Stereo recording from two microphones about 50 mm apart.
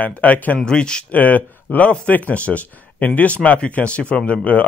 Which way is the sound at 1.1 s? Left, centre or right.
Left.